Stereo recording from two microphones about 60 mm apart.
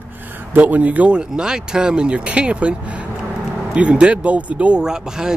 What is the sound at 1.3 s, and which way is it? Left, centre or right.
Speech, centre.